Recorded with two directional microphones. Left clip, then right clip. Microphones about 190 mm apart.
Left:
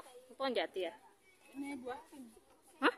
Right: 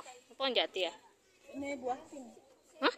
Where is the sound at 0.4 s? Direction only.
20° left (ahead or behind).